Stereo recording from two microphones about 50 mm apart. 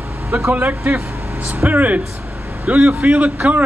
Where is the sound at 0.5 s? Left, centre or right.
Right.